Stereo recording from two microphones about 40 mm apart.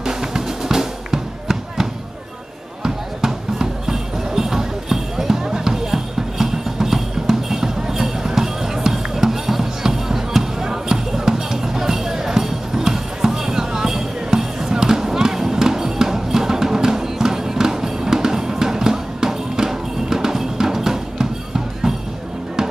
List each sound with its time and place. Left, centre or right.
0.0 s music: centre